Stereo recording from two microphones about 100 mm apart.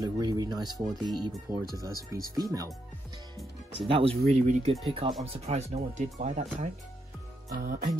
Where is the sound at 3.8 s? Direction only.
70° right (ahead or behind); by 4.8 s 90° right.